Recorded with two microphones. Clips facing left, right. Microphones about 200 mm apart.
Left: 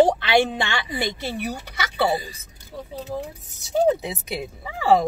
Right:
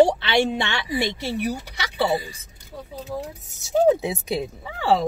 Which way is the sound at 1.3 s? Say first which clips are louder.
Right 3 dB; 55° left (ahead or behind).